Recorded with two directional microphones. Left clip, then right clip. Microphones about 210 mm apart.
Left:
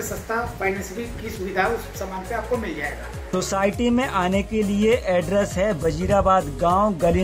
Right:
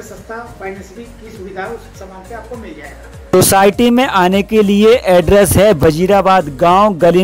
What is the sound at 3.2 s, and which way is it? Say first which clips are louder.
Speech: right 14 dB; 45° right (ahead or behind).